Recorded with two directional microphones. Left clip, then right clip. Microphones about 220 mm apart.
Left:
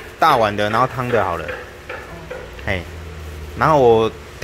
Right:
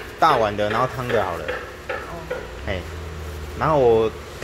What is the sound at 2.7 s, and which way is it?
Speech, 25° left (ahead or behind).